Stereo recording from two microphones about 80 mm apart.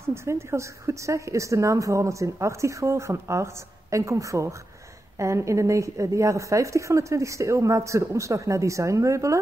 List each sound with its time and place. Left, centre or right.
0.0 s a woman's voice: right